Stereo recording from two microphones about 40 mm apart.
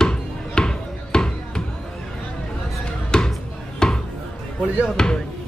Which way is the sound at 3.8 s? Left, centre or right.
Centre.